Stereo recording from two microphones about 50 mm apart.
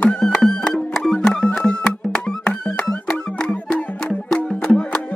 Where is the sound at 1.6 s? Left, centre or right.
Left.